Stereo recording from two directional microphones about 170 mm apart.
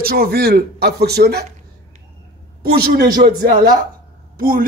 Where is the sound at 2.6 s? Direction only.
65° right (ahead or behind).